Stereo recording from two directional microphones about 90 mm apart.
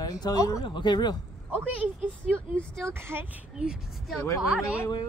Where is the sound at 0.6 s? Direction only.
60° left (ahead or behind).